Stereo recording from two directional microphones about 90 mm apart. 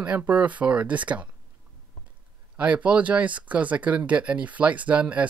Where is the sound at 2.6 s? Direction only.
15° right (ahead or behind).